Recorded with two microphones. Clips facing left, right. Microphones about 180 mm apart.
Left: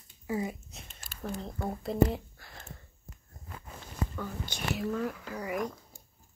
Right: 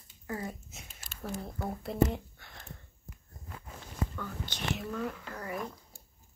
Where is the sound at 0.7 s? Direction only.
5° right (ahead or behind).